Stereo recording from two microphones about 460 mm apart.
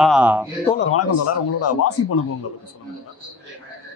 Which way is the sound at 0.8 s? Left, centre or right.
Left.